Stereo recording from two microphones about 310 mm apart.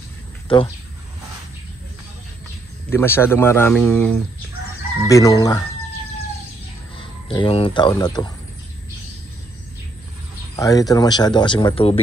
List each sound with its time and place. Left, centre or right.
0.5 s speech: centre
2.9 s speech: centre
7.0 s speech: centre
10.5 s speech: centre